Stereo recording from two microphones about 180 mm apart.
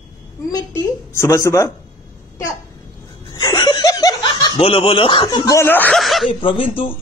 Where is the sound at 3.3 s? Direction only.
25° left (ahead or behind); by 6.3 s centre (ahead or behind).